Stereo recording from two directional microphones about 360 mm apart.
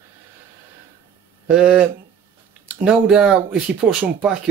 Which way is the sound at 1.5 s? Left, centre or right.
Centre.